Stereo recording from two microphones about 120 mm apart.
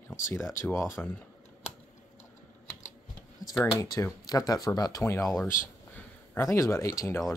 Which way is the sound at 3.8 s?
25° left (ahead or behind).